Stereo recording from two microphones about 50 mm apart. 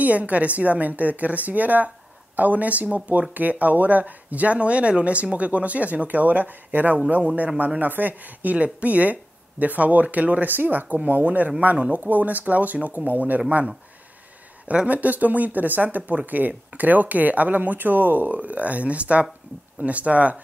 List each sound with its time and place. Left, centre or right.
0.0 s speech: right
14.7 s speech: right